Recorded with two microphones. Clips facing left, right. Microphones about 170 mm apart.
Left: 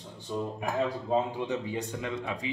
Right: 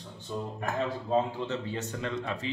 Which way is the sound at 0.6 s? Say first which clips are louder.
Even; 15° left (ahead or behind).